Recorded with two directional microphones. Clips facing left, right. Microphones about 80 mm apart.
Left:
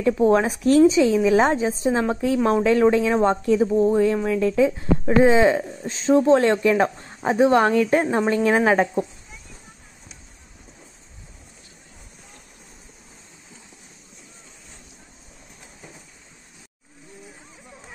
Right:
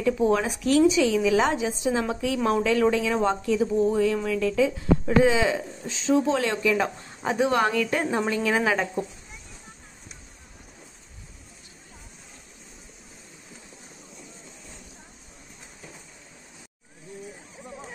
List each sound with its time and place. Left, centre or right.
0.0 s a woman's voice: left